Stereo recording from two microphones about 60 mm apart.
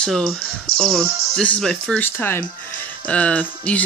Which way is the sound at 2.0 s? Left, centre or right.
Left.